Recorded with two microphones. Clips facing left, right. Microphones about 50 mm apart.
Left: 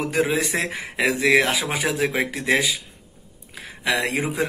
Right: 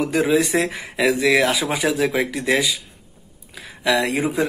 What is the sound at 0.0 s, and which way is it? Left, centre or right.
Speech, left.